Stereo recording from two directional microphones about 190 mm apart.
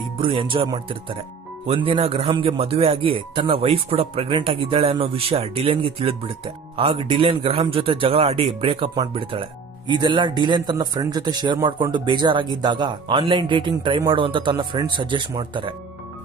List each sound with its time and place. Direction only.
0.2 s speech: 30° right (ahead or behind)